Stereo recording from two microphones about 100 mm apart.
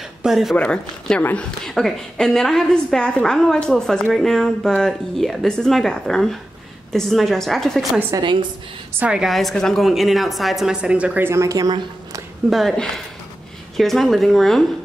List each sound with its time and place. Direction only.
0.2 s speech: 5° right (ahead or behind)
0.6 s a woman's voice: 10° left (ahead or behind)
8.2 s a woman's voice: 50° right (ahead or behind)
9.0 s a woman's voice: 5° right (ahead or behind)
11.2 s speech: 30° right (ahead or behind)
12.4 s a woman's voice: centre (ahead or behind)